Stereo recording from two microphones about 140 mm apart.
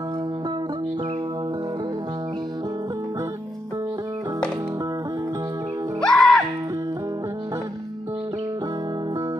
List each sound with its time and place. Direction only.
5.9 s music: 5° left (ahead or behind)